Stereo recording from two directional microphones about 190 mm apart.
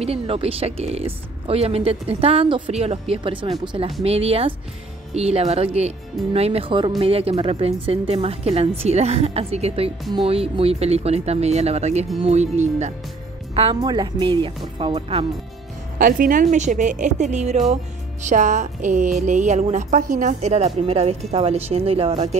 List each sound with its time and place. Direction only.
0.0 s speech: 30° right (ahead or behind)
13.6 s speech: 25° right (ahead or behind)
16.0 s speech: 45° right (ahead or behind)